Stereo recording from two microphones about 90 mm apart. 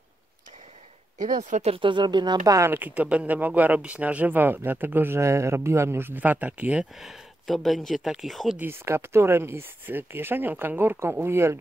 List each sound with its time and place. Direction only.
1.7 s speech: 70° right (ahead or behind); by 2.7 s 40° right (ahead or behind)
2.7 s speech: 20° right (ahead or behind)
7.0 s speech: centre (ahead or behind)
8.5 s speech: 25° right (ahead or behind)